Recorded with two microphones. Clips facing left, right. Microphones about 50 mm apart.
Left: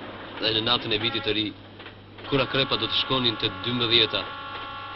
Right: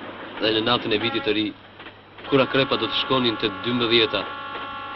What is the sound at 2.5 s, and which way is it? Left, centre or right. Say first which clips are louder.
A man's voice: right 4 dB; centre.